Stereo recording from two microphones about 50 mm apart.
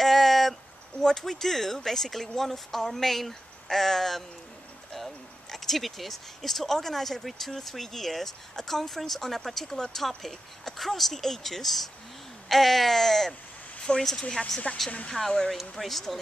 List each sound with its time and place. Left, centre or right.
0.0 s a sound: centre
1.0 s speech: centre
14.7 s speech: left; by 16.2 s centre